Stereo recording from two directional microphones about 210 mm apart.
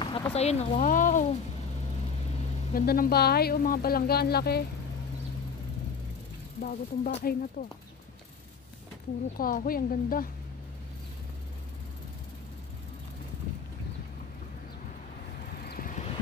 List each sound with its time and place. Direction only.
0.0 s a sound: 25° left (ahead or behind)
2.7 s speech: 45° left (ahead or behind)
6.6 s speech: 40° left (ahead or behind)
9.4 s speech: 40° left (ahead or behind)
15.7 s vehicle: 40° left (ahead or behind)